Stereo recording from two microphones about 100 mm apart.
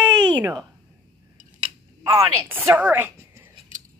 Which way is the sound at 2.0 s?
30° right (ahead or behind).